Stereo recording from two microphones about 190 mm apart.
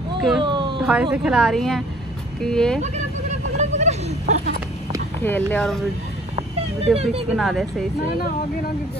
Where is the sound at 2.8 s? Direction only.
35° right (ahead or behind).